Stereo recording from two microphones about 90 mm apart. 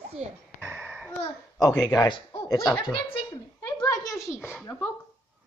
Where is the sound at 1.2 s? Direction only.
45° left (ahead or behind).